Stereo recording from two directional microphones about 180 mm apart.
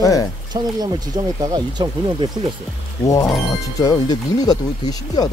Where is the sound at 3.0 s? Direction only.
20° left (ahead or behind).